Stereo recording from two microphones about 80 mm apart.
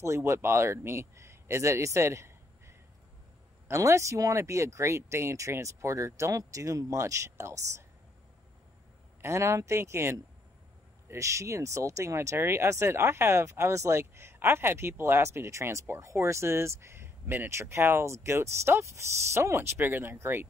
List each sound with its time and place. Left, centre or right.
0.0 s speech: right
9.2 s speech: right